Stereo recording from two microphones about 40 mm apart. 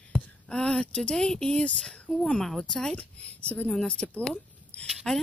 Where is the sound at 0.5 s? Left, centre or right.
Left.